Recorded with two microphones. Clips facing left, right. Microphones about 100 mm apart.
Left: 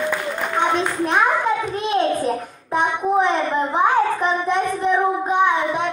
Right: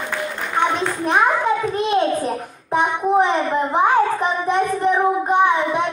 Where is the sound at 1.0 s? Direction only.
5° right (ahead or behind).